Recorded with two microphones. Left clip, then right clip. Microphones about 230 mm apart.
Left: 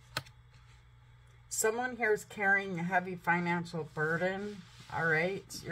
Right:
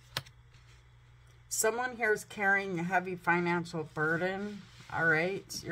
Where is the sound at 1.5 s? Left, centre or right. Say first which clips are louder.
Right 1 dB; centre.